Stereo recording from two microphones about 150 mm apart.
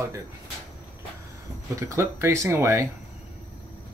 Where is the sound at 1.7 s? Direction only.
20° right (ahead or behind).